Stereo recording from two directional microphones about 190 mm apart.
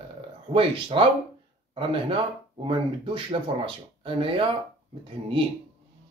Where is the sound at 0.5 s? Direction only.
25° right (ahead or behind).